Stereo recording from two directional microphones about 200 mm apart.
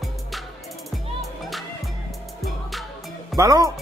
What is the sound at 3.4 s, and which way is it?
Speech, 15° right (ahead or behind).